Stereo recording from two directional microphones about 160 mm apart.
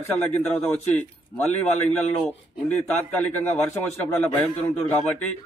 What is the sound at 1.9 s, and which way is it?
Speech, centre (ahead or behind).